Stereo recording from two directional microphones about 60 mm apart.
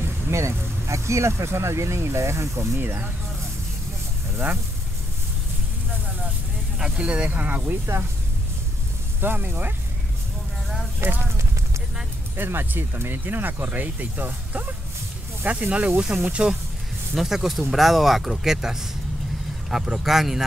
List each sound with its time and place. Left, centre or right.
0.3 s speech: right
2.8 s speech: right
6.8 s speech: centre
9.2 s speech: right
11.0 s speech: right
12.4 s speech: right; by 16.5 s centre
17.1 s speech: centre